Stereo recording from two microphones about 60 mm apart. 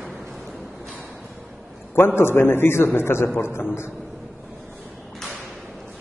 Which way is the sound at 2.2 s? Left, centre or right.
Left.